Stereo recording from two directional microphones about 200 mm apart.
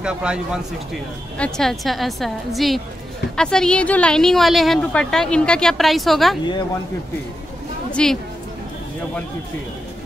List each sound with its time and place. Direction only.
0.0 s a woman's voice: 5° right (ahead or behind)
7.9 s a woman's voice: 5° left (ahead or behind)